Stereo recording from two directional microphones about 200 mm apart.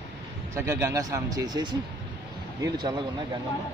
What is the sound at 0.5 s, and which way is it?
Speech, 15° right (ahead or behind).